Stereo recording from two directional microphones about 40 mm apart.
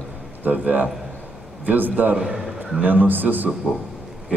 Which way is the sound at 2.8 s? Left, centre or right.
Right.